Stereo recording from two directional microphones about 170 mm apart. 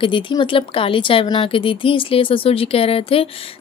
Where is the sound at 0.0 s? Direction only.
30° left (ahead or behind).